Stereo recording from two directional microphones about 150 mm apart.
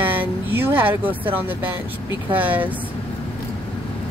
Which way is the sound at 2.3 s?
10° right (ahead or behind).